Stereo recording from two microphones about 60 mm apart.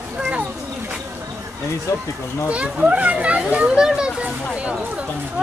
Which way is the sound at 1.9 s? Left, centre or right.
Left.